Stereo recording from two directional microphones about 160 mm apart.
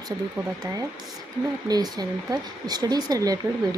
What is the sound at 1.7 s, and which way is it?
Speech, 25° right (ahead or behind).